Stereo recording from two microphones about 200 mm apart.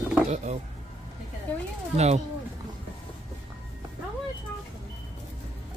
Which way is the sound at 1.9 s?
35° right (ahead or behind).